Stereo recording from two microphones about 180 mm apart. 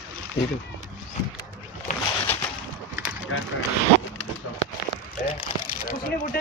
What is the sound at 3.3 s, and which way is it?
Speech, 90° left.